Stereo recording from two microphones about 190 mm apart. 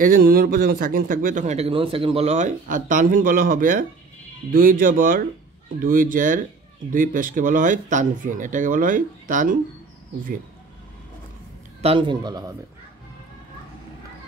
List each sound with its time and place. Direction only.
0.0 s a man's voice: 50° right (ahead or behind)
11.8 s a man's voice: 25° right (ahead or behind)